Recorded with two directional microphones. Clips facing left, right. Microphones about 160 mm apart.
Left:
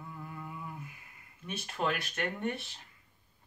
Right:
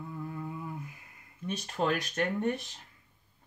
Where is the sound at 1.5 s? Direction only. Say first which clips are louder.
Right 3 dB; 40° right (ahead or behind).